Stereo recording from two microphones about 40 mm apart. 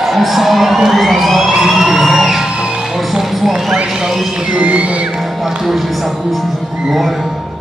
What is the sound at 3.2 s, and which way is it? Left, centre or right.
Horse, centre.